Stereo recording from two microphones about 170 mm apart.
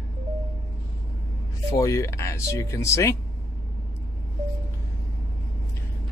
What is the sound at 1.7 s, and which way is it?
Speech, 20° left (ahead or behind).